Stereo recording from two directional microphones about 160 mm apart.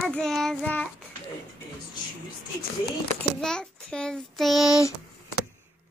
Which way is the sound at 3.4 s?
5° left (ahead or behind).